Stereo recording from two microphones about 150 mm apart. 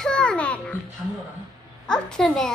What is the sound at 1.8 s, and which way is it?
Speech, 5° left (ahead or behind).